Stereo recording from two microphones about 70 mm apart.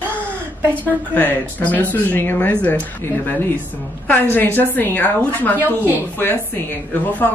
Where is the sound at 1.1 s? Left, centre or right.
Left.